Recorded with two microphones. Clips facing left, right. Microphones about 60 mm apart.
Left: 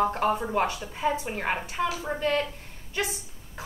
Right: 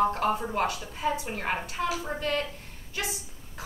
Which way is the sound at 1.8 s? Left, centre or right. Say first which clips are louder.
Left 2 dB; centre.